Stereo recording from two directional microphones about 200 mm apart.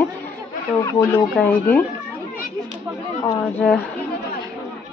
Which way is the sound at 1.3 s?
5° left (ahead or behind).